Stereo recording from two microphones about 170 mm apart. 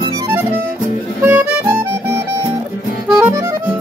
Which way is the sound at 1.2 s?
10° right (ahead or behind).